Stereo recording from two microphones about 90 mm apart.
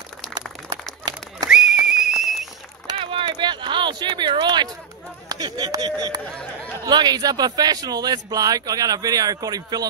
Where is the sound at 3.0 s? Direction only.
75° right (ahead or behind); by 4.6 s 55° right (ahead or behind).